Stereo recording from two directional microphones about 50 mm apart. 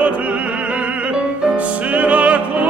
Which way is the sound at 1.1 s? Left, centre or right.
Right.